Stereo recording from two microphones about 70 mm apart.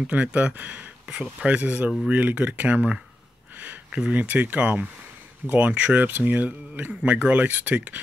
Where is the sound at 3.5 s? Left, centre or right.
Right.